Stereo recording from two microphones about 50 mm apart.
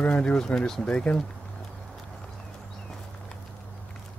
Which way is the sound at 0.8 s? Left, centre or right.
Left.